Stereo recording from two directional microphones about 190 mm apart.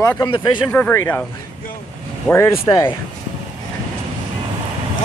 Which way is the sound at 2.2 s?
15° left (ahead or behind).